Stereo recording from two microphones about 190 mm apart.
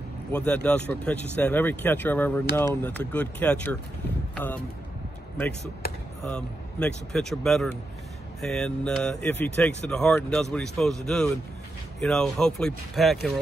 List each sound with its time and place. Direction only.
0.3 s speech: 5° left (ahead or behind)
6.2 s speech: 5° left (ahead or behind)
12.0 s speech: 5° left (ahead or behind)